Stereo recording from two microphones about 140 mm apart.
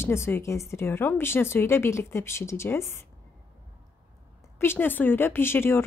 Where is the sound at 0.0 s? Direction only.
20° left (ahead or behind).